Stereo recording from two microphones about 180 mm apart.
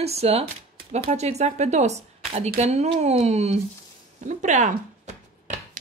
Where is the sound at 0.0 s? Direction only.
35° right (ahead or behind).